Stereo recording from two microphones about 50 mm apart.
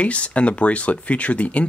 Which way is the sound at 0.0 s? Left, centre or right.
Left.